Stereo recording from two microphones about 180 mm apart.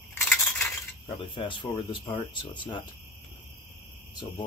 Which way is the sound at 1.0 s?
30° left (ahead or behind).